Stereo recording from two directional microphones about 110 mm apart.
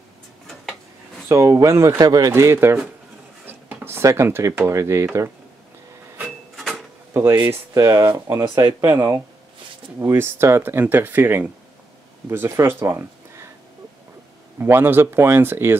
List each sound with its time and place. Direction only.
1.3 s speech: 25° right (ahead or behind)
6.5 s a sound: centre (ahead or behind)
7.2 s speech: 25° right (ahead or behind)
14.6 s speech: 20° right (ahead or behind)